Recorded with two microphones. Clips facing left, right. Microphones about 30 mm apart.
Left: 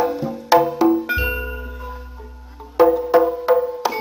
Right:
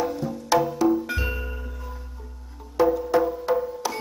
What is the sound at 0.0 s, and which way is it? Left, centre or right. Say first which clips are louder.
Music: left 6 dB; left.